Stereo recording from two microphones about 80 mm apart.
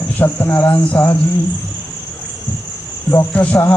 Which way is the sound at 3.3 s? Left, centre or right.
Centre.